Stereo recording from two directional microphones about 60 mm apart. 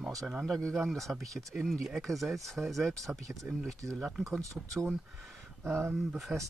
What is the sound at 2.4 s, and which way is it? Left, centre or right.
Speech, centre.